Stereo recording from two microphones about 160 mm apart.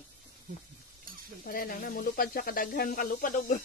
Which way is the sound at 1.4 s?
60° left (ahead or behind).